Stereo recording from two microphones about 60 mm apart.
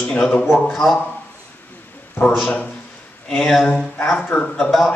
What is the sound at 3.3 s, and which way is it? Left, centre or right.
Speech, centre.